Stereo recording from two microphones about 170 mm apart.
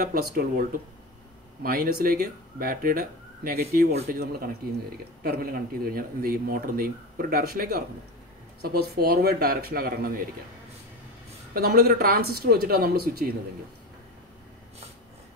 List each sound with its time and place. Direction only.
0.0 s speech: 60° right (ahead or behind)
11.5 s speech: 65° right (ahead or behind)